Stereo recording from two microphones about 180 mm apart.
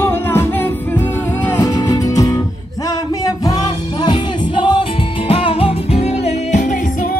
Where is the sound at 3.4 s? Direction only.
25° left (ahead or behind); by 7.1 s 45° left (ahead or behind).